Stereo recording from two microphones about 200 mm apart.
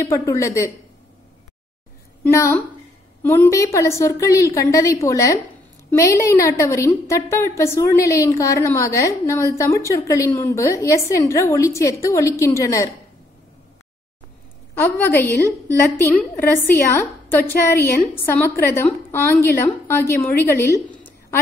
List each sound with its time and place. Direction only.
0.1 s a woman's voice: 15° left (ahead or behind)
2.3 s a woman's voice: 15° left (ahead or behind)
14.8 s a woman's voice: 10° left (ahead or behind)